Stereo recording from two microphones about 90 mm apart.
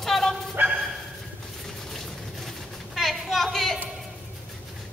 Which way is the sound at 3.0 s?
Centre (ahead or behind).